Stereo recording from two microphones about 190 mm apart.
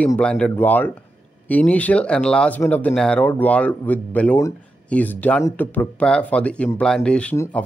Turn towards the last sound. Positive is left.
turn(degrees=10)  # may be behind; listen again after turning